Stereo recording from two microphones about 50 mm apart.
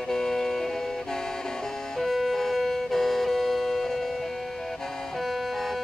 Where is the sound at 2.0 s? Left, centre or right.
Centre.